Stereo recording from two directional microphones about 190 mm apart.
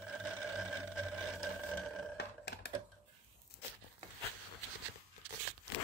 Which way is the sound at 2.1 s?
60° left (ahead or behind).